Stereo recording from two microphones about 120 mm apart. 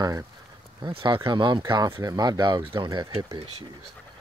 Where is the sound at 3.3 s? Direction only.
60° right (ahead or behind).